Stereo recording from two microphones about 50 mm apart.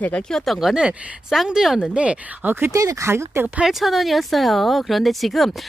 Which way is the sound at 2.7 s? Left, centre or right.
Right.